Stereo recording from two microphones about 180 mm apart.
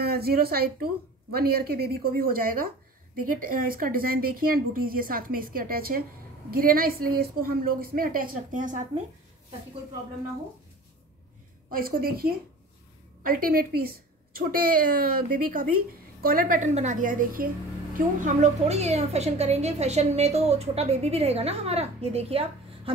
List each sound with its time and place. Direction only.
0.0 s a woman's voice: 60° right (ahead or behind)
11.7 s a woman's voice: 55° right (ahead or behind); by 22.4 s 35° right (ahead or behind)